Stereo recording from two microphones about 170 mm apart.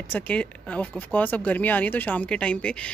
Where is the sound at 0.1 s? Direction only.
10° left (ahead or behind).